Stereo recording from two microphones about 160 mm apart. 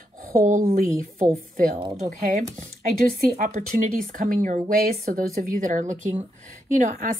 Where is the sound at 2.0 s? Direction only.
50° right (ahead or behind).